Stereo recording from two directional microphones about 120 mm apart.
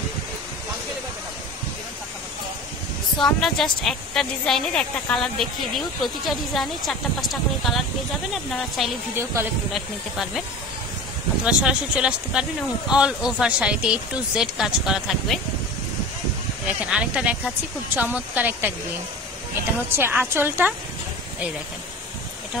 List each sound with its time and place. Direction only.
3.2 s a woman's voice: 5° left (ahead or behind)
9.1 s speech: 20° right (ahead or behind)
9.7 s a woman's voice: centre (ahead or behind)
11.4 s speech: 10° right (ahead or behind)
16.6 s speech: 10° right (ahead or behind)